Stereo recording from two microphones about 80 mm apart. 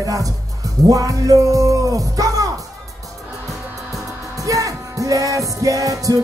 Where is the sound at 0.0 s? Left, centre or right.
Right.